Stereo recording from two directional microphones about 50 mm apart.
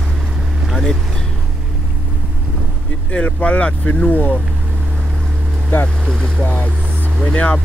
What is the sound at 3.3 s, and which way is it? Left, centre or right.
Speech, left.